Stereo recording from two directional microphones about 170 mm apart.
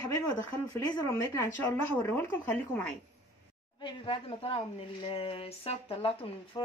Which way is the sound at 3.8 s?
30° left (ahead or behind).